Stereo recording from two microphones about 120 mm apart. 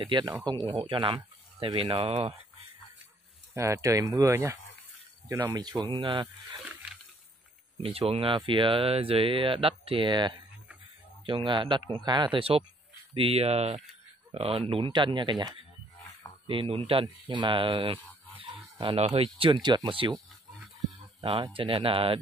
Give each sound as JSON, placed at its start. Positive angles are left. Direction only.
{"t": 0.0, "sound": "speech", "side_deg": -40}
{"t": 3.5, "sound": "speech", "side_deg": -25}
{"t": 5.5, "sound": "speech", "side_deg": -35}
{"t": 7.8, "sound": "speech", "side_deg": -55}
{"t": 17.0, "sound": "speech", "side_deg": -40}
{"t": 18.4, "sound": "a sound", "side_deg": -45}
{"t": 18.9, "sound": "speech", "side_deg": -60}
{"t": 21.2, "sound": "speech", "side_deg": -50}